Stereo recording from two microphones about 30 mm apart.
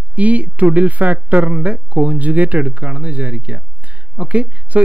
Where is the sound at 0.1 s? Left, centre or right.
Right.